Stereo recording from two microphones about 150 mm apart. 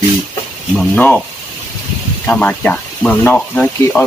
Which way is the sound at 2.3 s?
10° left (ahead or behind).